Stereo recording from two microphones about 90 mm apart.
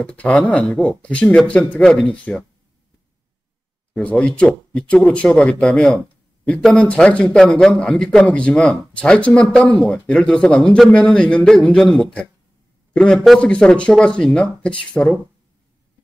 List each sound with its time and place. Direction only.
0.0 s a man's voice: 10° left (ahead or behind)
3.9 s a man's voice: 15° left (ahead or behind)